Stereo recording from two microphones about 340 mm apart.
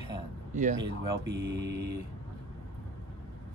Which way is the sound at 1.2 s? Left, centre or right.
Right.